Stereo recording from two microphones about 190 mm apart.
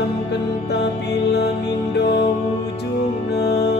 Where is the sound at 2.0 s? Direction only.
60° left (ahead or behind).